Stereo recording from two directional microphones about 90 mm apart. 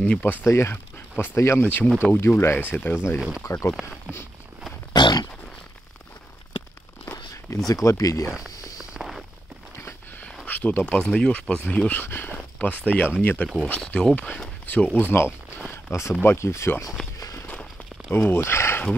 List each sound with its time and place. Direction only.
0.0 s speech: 15° left (ahead or behind)
3.2 s speech: 10° right (ahead or behind)
3.4 s speech: 35° left (ahead or behind)
4.1 s speech: 10° right (ahead or behind)
4.9 s pig: 55° left (ahead or behind)
7.5 s speech: 40° left (ahead or behind)
8.7 s a sound: 5° right (ahead or behind)
9.8 s a sound: 30° left (ahead or behind)
10.4 s speech: 20° left (ahead or behind)
17.2 s walk: 40° left (ahead or behind)
18.1 s speech: 25° left (ahead or behind)